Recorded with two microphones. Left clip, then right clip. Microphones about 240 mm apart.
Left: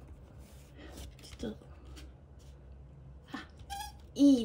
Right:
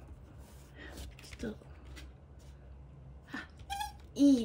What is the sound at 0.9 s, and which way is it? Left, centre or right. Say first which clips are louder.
Mechanisms: left 1 dB; centre.